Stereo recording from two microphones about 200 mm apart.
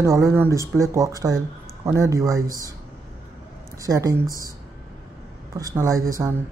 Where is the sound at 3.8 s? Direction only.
20° right (ahead or behind).